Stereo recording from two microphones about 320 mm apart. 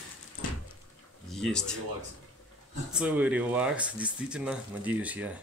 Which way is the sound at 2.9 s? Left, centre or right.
Centre.